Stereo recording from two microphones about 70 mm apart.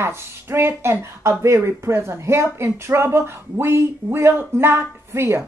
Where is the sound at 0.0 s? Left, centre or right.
Right.